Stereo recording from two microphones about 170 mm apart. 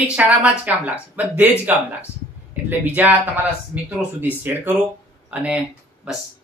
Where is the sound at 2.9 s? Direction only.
10° right (ahead or behind).